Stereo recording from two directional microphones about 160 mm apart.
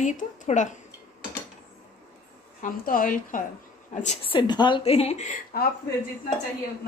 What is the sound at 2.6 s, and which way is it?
A woman's voice, 60° left (ahead or behind).